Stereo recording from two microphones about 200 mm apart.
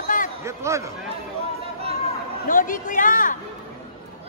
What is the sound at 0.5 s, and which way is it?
Speech, 15° right (ahead or behind).